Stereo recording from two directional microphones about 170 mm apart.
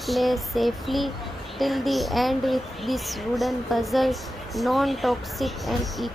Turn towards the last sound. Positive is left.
turn(degrees=0)  # may be behind; listen again after turning